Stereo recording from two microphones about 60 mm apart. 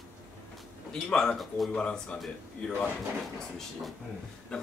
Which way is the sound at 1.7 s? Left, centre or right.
Centre.